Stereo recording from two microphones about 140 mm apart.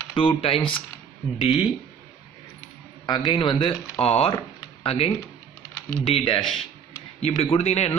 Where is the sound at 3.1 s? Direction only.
35° left (ahead or behind).